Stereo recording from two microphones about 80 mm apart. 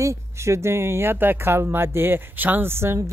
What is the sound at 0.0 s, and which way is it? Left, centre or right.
Speech, right.